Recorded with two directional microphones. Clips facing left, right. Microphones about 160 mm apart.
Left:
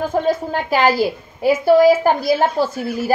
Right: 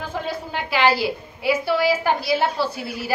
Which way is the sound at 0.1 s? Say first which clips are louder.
Left 9 dB; 45° left (ahead or behind).